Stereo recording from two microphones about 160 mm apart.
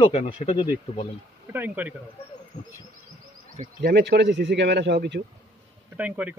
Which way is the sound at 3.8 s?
80° right.